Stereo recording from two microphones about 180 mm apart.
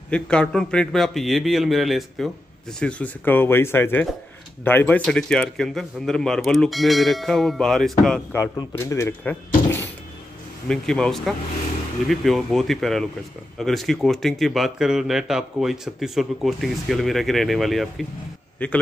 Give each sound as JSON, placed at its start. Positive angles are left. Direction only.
{"t": 0.1, "sound": "speech", "side_deg": 5}
{"t": 8.5, "sound": "speech", "side_deg": 15}
{"t": 10.7, "sound": "speech", "side_deg": 5}